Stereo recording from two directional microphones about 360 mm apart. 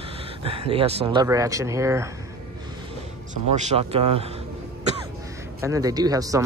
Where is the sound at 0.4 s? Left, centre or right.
Centre.